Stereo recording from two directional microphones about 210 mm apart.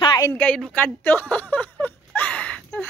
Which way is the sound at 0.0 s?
15° left (ahead or behind).